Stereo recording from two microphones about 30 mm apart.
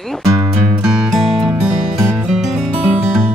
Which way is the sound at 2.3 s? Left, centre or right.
Centre.